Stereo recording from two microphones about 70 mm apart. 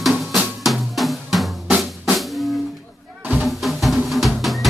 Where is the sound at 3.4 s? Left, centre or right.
Centre.